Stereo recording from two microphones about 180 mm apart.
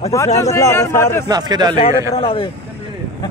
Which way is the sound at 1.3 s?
25° right (ahead or behind).